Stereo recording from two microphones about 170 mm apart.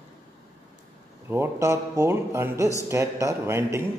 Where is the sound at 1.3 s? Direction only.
15° right (ahead or behind).